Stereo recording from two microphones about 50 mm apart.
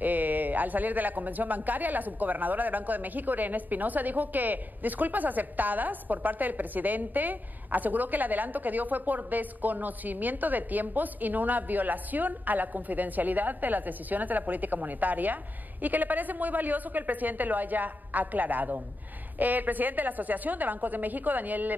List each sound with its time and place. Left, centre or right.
0.0 s speech: right